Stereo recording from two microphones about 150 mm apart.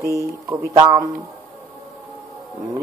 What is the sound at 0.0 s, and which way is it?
Speech, 20° right (ahead or behind).